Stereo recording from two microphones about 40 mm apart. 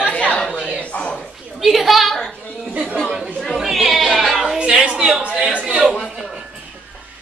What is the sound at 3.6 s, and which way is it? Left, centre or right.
Speech, centre.